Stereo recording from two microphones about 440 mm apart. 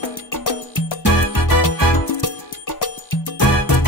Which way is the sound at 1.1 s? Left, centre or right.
Left.